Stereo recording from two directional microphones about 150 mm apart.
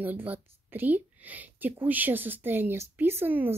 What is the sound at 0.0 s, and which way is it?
Speech, 10° right (ahead or behind).